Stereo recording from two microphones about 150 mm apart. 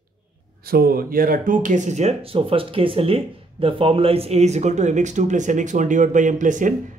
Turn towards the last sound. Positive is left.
turn(degrees=-60)  # may be behind; listen again after turning